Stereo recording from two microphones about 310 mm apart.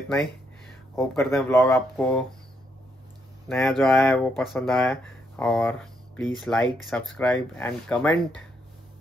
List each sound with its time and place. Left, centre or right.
0.9 s speech: centre
3.4 s speech: centre